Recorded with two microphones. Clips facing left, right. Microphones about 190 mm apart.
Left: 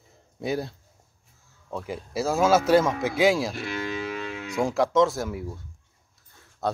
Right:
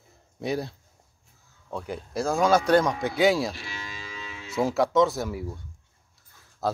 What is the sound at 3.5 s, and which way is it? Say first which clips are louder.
Cattle: left 10 dB; 55° left (ahead or behind).